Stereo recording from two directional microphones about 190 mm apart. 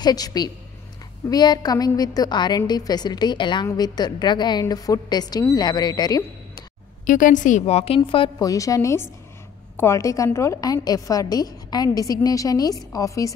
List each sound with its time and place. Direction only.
0.0 s a woman's voice: 20° left (ahead or behind)
7.1 s a woman's voice: 45° left (ahead or behind); by 13.3 s 15° left (ahead or behind)